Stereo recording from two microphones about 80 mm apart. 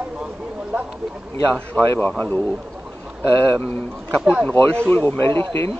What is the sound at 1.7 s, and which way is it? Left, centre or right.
Speech, centre.